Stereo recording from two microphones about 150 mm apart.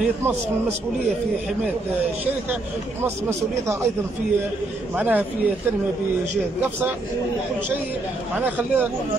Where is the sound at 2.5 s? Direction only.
15° right (ahead or behind).